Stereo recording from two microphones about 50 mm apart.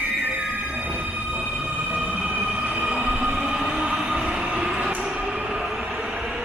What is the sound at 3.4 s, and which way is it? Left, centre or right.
Train, centre.